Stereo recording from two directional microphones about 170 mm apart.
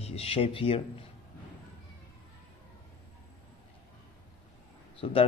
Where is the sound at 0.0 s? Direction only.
35° left (ahead or behind).